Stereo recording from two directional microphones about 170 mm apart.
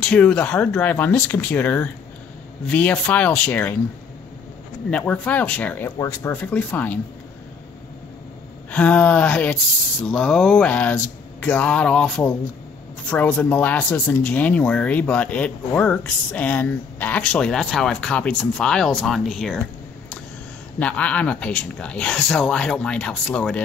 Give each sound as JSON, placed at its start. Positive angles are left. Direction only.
{"t": 0.0, "sound": "speech", "side_deg": 5}
{"t": 4.9, "sound": "speech", "side_deg": 5}
{"t": 8.6, "sound": "speech", "side_deg": 10}
{"t": 20.8, "sound": "speech", "side_deg": 10}